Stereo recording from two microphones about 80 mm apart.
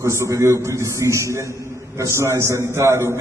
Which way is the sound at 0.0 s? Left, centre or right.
Right.